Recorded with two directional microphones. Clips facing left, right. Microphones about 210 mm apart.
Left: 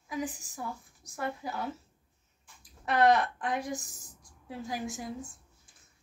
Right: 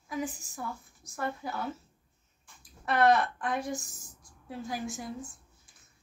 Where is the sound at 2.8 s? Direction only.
15° left (ahead or behind).